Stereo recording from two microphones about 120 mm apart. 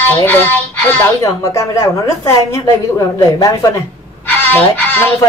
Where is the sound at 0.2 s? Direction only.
15° left (ahead or behind).